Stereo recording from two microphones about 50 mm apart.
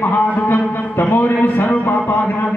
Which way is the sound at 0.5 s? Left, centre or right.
Left.